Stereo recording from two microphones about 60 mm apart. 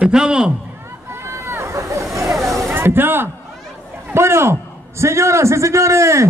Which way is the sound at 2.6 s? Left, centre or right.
Right.